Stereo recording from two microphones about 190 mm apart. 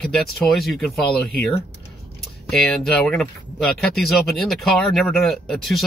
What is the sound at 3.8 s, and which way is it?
Speech, centre (ahead or behind).